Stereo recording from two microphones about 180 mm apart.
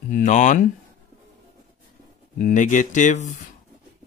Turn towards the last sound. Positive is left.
turn(degrees=45)  # may be behind; listen again after turning